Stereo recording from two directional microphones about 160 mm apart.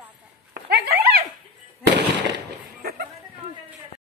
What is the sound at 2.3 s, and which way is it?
Speech, 80° right.